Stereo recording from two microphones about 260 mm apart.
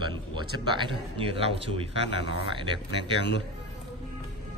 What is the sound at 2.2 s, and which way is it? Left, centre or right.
Speech, left.